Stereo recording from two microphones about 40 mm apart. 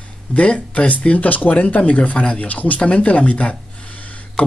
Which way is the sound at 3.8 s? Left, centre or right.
Left.